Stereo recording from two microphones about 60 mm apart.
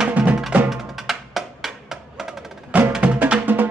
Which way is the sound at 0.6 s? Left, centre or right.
Centre.